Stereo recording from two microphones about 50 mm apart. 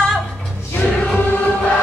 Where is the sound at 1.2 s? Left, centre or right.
Left.